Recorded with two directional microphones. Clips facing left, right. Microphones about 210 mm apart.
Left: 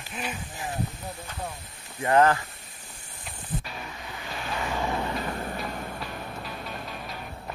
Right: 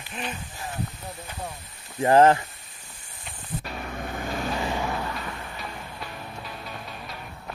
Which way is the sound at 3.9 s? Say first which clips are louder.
Right 7 dB; 50° right (ahead or behind).